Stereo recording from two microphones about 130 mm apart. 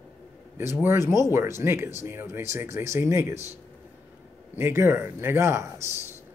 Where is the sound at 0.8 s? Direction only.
20° right (ahead or behind).